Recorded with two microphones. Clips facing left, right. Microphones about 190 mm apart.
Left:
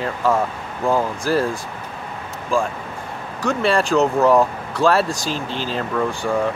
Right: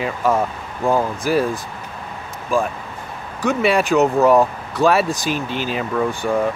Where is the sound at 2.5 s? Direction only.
15° right (ahead or behind).